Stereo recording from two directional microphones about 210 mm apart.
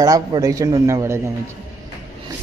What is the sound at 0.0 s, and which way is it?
A man's voice, 15° right (ahead or behind).